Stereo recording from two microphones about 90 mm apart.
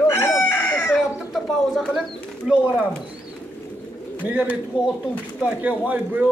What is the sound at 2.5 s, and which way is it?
Speech, 10° right (ahead or behind).